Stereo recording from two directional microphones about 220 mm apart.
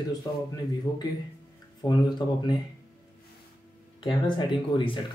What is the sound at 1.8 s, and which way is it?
Speech, 20° left (ahead or behind).